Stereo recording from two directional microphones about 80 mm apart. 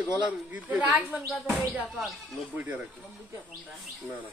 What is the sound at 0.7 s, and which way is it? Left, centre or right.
Speech, centre.